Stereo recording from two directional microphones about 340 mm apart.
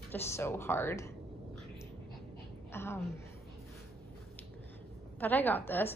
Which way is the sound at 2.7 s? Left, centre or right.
Centre.